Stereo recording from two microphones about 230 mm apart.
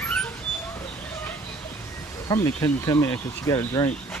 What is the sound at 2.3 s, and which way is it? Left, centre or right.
Speech, centre.